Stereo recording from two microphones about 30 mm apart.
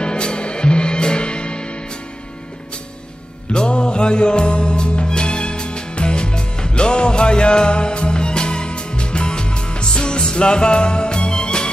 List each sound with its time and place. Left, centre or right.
0.0 s music: left
3.5 s music: left